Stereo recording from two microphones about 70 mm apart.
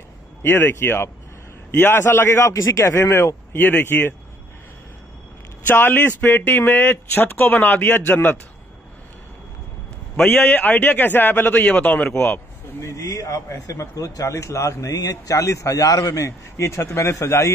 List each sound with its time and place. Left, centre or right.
0.4 s speech: left
3.5 s speech: left
5.7 s speech: left
10.2 s speech: centre
12.8 s speech: left